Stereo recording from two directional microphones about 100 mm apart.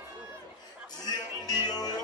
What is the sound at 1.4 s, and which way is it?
Music, 40° left (ahead or behind).